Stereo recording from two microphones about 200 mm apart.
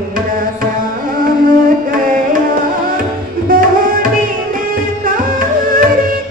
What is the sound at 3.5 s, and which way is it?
Tabla, 45° right (ahead or behind).